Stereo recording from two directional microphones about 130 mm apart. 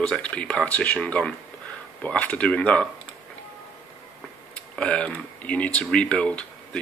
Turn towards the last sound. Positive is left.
turn(degrees=10)  # may be behind; listen again after turning